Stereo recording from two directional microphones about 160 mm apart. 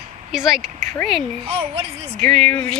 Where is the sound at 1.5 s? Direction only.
40° right (ahead or behind).